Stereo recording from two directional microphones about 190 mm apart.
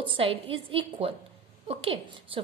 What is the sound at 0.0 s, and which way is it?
A woman's voice, 30° right (ahead or behind).